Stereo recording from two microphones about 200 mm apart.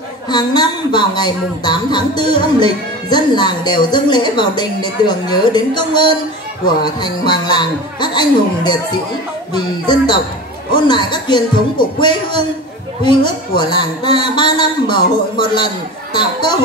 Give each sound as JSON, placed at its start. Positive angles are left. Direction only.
{"t": 0.3, "sound": "speech", "side_deg": 20}